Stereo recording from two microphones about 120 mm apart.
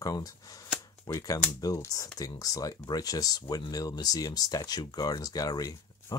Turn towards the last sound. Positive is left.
turn(degrees=30)  # may be behind; listen again after turning